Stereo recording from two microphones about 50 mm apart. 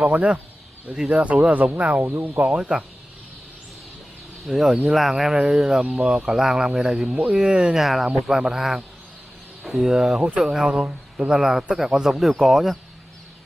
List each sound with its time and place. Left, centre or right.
0.0 s speech: right
2.5 s speech: right
4.5 s speech: centre
7.8 s speech: centre
9.8 s speech: centre